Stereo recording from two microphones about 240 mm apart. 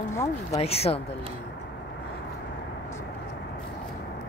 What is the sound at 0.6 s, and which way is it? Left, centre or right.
Speech, left.